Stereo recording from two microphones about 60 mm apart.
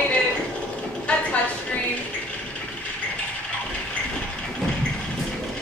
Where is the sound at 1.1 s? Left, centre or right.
Left.